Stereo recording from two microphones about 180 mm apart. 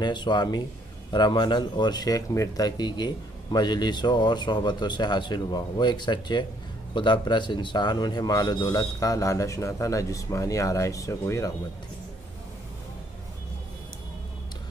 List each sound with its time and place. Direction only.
0.0 s speech: 25° left (ahead or behind)